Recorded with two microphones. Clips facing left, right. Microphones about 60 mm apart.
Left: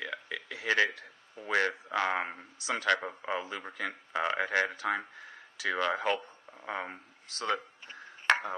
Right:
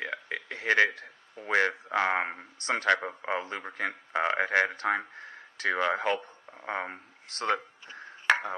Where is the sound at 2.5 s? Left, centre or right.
Right.